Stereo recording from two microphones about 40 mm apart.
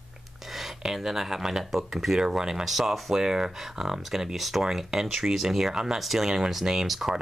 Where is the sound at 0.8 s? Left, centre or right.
Centre.